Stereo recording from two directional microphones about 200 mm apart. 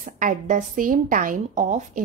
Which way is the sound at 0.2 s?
40° right (ahead or behind).